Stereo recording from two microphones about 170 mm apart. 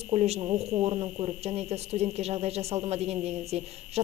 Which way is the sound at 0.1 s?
35° right (ahead or behind).